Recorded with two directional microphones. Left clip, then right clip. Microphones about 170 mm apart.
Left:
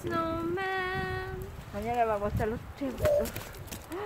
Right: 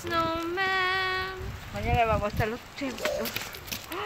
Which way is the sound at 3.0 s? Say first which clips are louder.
Left 4 dB; 50° left (ahead or behind).